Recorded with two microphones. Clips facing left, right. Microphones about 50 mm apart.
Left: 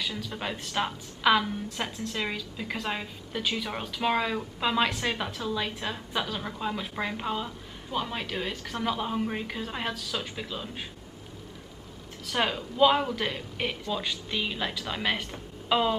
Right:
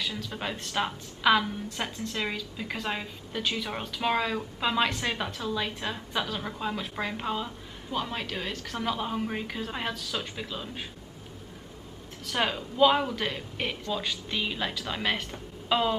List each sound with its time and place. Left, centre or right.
0.0 s a woman's voice: centre
12.3 s a woman's voice: centre